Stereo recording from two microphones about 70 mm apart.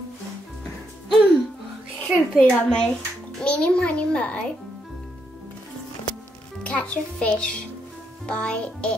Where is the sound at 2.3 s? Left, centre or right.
Centre.